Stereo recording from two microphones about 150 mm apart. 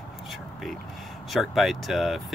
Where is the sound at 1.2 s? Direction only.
Centre (ahead or behind).